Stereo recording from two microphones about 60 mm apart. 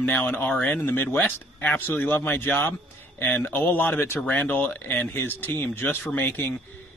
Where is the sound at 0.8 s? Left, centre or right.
Left.